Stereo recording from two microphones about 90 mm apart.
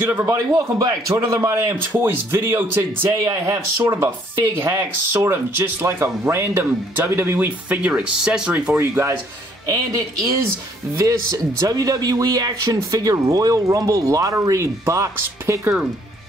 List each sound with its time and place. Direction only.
0.0 s speech: 20° right (ahead or behind)
0.3 s speech: 40° right (ahead or behind); by 8.7 s 15° right (ahead or behind)
8.7 s speech: 30° right (ahead or behind)
9.7 s speech: 40° right (ahead or behind)
12.7 s speech: 35° right (ahead or behind)